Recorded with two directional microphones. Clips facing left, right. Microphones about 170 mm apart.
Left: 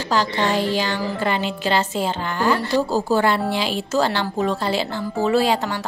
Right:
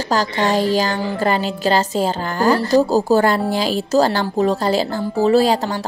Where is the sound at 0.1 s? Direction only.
40° right (ahead or behind).